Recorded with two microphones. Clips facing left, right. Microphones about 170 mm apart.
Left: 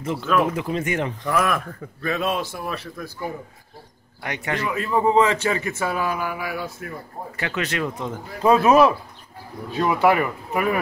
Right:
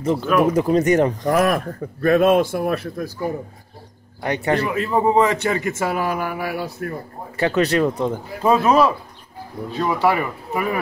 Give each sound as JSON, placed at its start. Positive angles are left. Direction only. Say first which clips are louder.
{"t": 0.0, "sound": "speech", "louder": "right 4 dB", "side_deg": -35}
{"t": 4.2, "sound": "speech", "louder": "right 7 dB", "side_deg": -35}
{"t": 5.7, "sound": "speech", "louder": "right 3 dB", "side_deg": -45}
{"t": 8.4, "sound": "speech", "louder": "left 1 dB", "side_deg": 0}